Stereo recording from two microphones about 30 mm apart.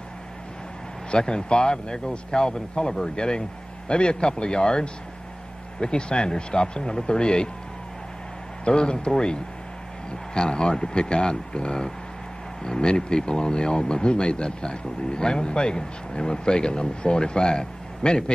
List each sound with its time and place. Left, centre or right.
1.1 s speech: left
8.6 s speech: left